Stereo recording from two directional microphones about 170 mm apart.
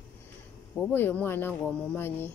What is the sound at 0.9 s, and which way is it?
Speech, 10° left (ahead or behind).